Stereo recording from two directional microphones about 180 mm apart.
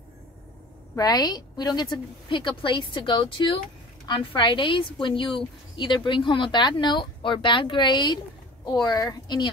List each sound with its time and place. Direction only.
0.9 s speech: 20° left (ahead or behind)